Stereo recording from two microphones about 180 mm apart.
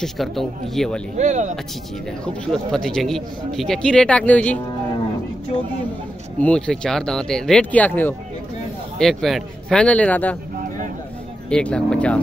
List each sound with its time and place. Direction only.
0.0 s a man's voice: centre (ahead or behind)
1.1 s speech: 40° right (ahead or behind)
2.2 s a man's voice: 5° left (ahead or behind)
6.4 s a man's voice: 5° left (ahead or behind)
11.5 s speech: 5° left (ahead or behind)